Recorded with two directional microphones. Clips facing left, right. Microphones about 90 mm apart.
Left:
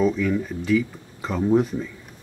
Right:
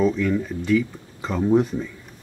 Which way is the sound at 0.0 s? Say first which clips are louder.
Right 1 dB; centre (ahead or behind).